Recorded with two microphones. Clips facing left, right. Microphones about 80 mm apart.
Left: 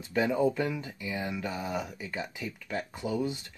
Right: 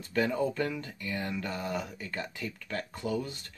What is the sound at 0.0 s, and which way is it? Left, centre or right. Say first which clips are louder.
Speech: left 2 dB; centre.